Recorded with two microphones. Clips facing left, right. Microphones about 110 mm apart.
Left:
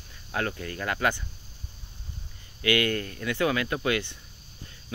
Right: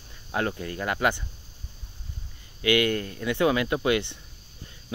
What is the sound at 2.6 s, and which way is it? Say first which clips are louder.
Speech: right 2 dB; 20° right (ahead or behind).